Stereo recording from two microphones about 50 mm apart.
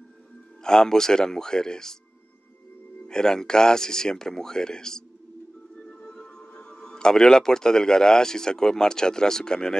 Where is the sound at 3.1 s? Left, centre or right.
Centre.